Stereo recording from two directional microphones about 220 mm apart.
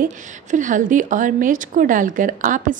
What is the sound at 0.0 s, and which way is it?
A woman's voice, 35° right (ahead or behind).